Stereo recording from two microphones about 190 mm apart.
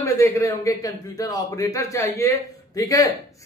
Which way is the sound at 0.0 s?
15° left (ahead or behind).